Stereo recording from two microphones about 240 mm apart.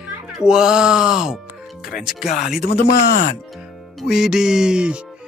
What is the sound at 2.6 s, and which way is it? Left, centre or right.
Speech, left.